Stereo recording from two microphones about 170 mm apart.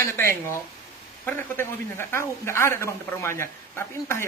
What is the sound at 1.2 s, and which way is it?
A man's voice, 15° left (ahead or behind).